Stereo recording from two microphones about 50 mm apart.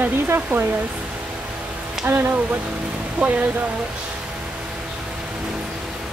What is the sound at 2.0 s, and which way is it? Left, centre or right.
Speech, right.